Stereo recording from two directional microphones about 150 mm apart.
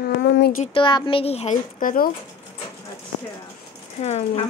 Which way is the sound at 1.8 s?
70° left (ahead or behind).